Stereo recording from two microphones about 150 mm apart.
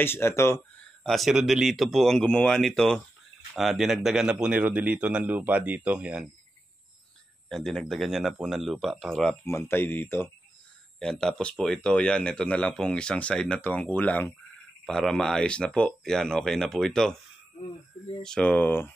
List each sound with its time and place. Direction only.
0.0 s speech: 15° left (ahead or behind)
1.0 s speech: centre (ahead or behind)
7.4 s speech: centre (ahead or behind)
9.4 s speech: 15° left (ahead or behind)
18.2 s speech: 5° left (ahead or behind)